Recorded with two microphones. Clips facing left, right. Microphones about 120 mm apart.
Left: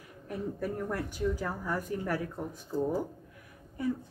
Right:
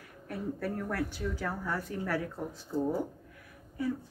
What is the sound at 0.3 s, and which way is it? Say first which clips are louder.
Speech: even; 15° left (ahead or behind).